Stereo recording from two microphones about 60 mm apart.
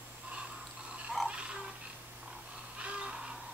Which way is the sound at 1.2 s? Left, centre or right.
Centre.